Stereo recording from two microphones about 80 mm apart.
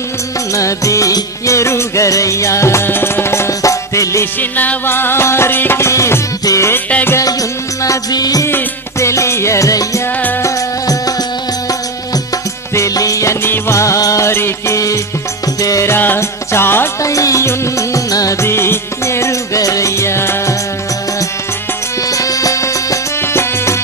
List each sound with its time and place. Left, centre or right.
0.6 s music of bollywood: left
4.4 s music: left
7.8 s music: left
8.5 s music: left
12.7 s music: left
15.6 s music: left
15.9 s music: left
17.0 s music: left
18.5 s music: left
22.1 s music: left